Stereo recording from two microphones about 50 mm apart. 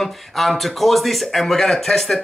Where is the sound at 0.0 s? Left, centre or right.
Centre.